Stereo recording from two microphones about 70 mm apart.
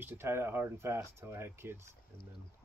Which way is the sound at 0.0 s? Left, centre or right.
Right.